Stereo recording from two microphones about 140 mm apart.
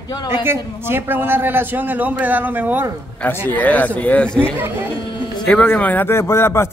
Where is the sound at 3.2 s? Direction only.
15° left (ahead or behind).